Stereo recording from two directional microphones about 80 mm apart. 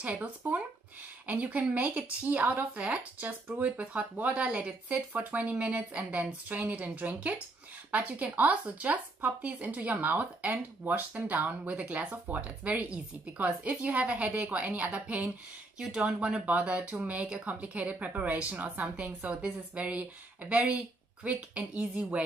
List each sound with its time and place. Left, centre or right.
0.0 s speech: centre